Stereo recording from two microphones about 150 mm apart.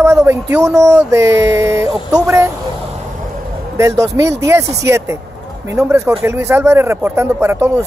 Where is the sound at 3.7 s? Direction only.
20° right (ahead or behind).